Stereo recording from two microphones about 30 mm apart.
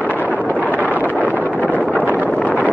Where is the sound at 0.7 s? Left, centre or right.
Right.